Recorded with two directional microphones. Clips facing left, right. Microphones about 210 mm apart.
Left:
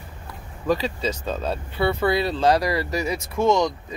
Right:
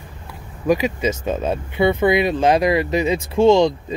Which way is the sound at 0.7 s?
15° right (ahead or behind).